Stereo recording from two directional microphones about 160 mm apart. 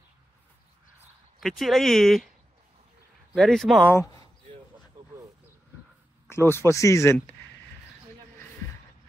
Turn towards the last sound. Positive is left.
turn(degrees=15)  # may be behind; listen again after turning